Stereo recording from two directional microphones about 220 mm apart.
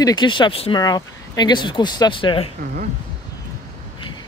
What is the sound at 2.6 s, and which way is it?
Speech, 40° right (ahead or behind).